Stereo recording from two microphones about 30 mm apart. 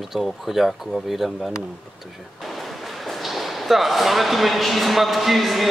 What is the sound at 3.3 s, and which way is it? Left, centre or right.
Speech, centre.